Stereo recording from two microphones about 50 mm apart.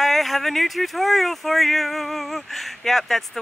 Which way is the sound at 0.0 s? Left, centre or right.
Centre.